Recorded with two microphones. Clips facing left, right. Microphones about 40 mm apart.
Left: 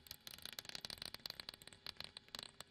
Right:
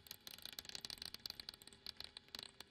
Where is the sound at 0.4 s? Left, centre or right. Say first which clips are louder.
Left 2 dB; centre; by 2.4 s left.